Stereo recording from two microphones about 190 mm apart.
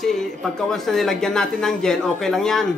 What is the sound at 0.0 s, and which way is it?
Speech, centre (ahead or behind).